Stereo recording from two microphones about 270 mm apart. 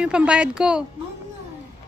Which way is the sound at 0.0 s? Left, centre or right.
Centre.